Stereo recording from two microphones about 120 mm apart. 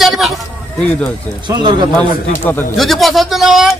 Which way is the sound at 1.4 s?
40° right (ahead or behind).